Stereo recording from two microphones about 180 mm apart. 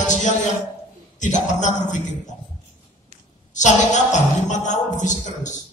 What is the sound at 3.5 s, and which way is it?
A man's voice, 40° left (ahead or behind).